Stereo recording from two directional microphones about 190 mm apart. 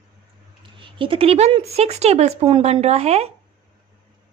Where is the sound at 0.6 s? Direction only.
25° right (ahead or behind).